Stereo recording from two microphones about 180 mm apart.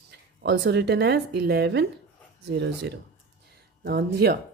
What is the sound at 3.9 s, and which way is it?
Speech, 60° right (ahead or behind).